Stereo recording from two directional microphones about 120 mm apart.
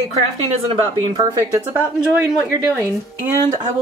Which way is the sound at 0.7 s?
50° right (ahead or behind).